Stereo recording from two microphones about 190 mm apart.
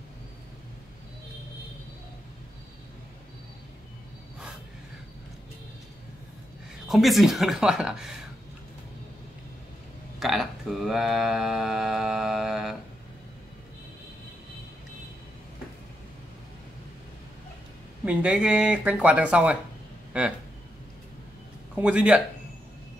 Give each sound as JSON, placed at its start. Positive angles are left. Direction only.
{"t": 6.9, "sound": "speech", "side_deg": 0}
{"t": 10.1, "sound": "mantra", "side_deg": 0}
{"t": 18.0, "sound": "speech", "side_deg": -5}
{"t": 20.1, "sound": "a sound", "side_deg": -5}
{"t": 21.7, "sound": "speech", "side_deg": -5}